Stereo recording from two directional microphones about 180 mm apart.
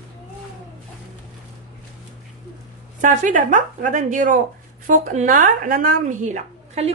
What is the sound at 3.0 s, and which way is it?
Speech, 45° right (ahead or behind).